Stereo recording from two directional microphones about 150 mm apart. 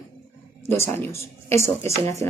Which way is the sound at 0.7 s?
15° left (ahead or behind).